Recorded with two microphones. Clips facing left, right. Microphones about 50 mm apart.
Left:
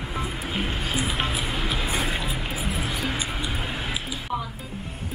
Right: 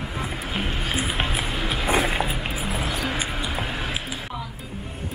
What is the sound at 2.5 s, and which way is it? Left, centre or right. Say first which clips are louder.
Music: right 1 dB; centre.